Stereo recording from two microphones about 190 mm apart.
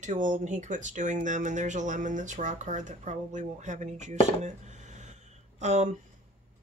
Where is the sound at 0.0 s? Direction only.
40° right (ahead or behind).